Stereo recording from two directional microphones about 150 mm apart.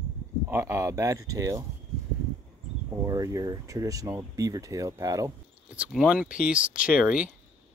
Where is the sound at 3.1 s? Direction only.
25° right (ahead or behind).